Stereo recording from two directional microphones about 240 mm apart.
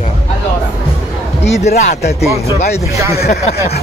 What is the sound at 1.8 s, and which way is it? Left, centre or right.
Speech, left.